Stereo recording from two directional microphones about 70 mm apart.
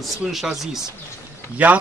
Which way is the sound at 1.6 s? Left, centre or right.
Centre.